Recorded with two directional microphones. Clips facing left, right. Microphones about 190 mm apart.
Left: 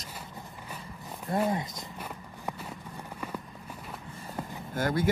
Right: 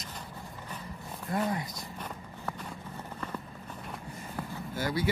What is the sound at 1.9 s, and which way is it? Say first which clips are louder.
Walk: even; 10° left (ahead or behind).